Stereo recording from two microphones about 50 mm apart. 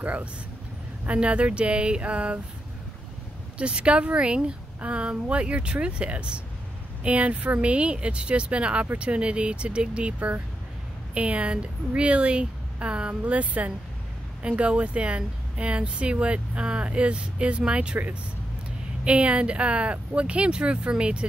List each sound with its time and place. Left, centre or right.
0.0 s speech: right
3.5 s speech: right